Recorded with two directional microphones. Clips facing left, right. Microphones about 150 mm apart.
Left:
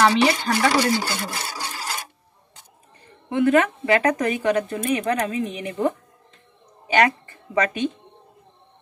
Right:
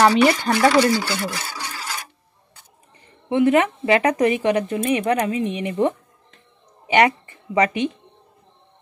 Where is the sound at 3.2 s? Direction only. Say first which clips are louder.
Right 1 dB; 20° right (ahead or behind).